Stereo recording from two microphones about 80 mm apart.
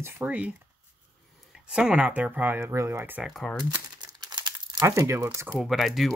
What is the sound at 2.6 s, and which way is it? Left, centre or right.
Speech, right.